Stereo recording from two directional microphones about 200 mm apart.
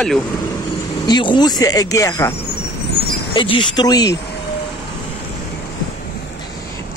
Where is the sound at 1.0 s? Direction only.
20° left (ahead or behind).